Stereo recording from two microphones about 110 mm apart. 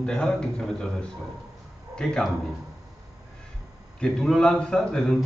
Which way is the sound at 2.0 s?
5° left (ahead or behind).